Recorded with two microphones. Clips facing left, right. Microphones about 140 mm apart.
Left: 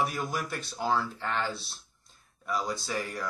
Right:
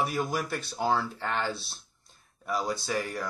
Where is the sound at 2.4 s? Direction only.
35° right (ahead or behind).